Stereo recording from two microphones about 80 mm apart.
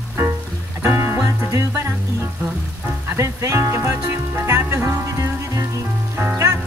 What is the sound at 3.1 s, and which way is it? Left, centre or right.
Speech, right.